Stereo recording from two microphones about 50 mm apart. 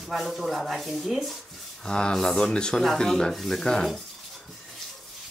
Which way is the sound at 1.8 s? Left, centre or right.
Centre.